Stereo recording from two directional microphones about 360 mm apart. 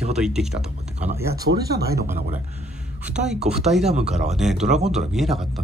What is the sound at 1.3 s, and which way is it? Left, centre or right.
Speech, right.